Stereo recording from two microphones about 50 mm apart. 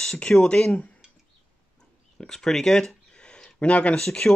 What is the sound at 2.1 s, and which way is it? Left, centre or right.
Speech, centre.